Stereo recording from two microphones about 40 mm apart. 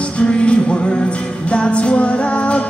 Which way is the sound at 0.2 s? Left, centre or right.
Left.